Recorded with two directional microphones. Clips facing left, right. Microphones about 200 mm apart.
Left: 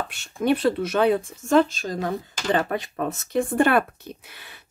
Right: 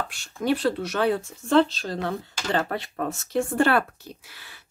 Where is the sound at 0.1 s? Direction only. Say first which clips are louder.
Left 5 dB; 25° left (ahead or behind).